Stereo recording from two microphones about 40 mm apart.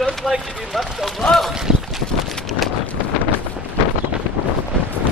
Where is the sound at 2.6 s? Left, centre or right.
Centre.